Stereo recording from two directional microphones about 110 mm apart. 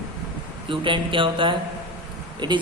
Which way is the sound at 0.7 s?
50° right (ahead or behind).